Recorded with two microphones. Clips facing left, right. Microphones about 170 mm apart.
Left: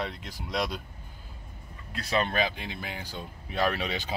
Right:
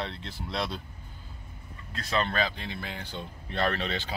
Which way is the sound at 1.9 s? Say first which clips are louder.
Left 1 dB; 10° left (ahead or behind).